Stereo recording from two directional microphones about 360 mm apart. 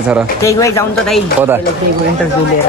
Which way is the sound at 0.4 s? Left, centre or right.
Centre.